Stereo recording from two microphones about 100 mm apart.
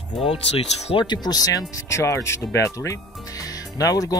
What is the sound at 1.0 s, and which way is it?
Speech, 45° left (ahead or behind).